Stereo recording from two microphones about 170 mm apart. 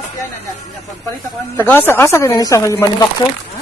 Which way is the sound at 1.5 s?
10° left (ahead or behind).